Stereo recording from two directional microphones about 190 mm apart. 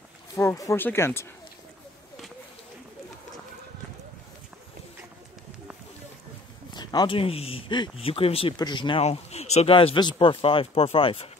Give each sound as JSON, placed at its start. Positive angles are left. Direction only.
{"t": 0.4, "sound": "speech", "side_deg": 15}
{"t": 6.7, "sound": "speech", "side_deg": 20}